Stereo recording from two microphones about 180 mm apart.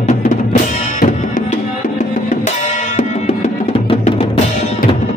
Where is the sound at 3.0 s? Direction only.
35° left (ahead or behind).